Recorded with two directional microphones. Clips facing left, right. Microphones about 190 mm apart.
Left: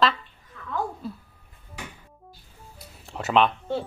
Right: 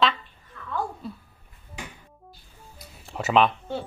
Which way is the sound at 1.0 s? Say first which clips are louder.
Left 2 dB; centre (ahead or behind).